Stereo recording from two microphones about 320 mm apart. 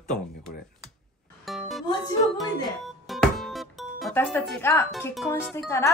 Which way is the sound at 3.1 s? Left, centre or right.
Centre.